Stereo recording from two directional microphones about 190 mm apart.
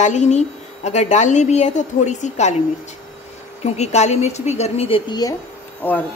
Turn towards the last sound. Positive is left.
turn(degrees=10)  # may be behind; listen again after turning